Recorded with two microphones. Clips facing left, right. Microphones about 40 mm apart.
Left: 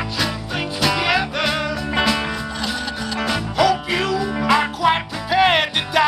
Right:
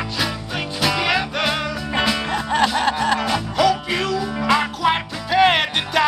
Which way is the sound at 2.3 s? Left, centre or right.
Right.